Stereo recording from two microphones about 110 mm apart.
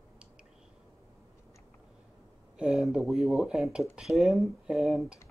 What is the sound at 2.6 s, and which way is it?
Speech, 5° right (ahead or behind).